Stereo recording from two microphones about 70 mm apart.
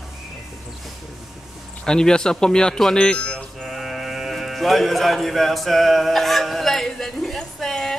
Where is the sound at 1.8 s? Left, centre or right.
Centre.